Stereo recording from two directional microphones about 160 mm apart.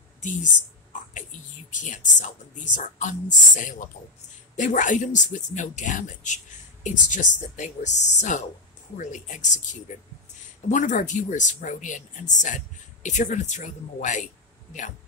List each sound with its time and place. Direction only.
0.2 s speech: 50° left (ahead or behind)
1.7 s a woman's voice: 50° left (ahead or behind)